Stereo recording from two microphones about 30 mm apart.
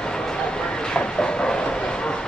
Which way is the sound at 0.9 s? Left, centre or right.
Left.